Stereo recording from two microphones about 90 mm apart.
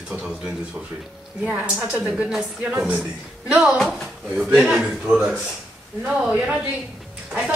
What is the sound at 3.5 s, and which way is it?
A man's voice, 5° right (ahead or behind).